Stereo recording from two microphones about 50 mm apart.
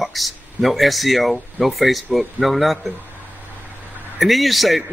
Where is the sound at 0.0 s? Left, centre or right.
Centre.